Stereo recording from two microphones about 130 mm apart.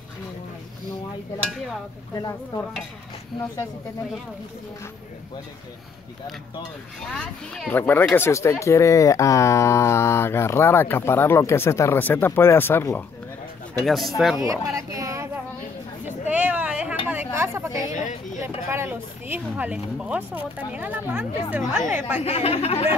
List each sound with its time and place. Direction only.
2.1 s speech: 25° left (ahead or behind)
7.2 s speech: 5° left (ahead or behind)
13.8 s speech: centre (ahead or behind)
14.4 s speech: 25° right (ahead or behind)
16.1 s a sound: 10° right (ahead or behind)
18.7 s speech: 15° right (ahead or behind)
22.2 s speech: 55° left (ahead or behind)